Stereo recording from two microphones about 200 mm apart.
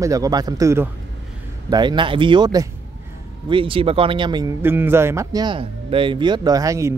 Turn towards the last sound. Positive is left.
turn(degrees=-15)  # may be behind; listen again after turning